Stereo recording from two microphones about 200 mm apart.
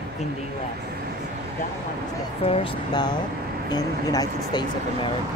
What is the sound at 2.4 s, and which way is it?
Speech, 25° left (ahead or behind).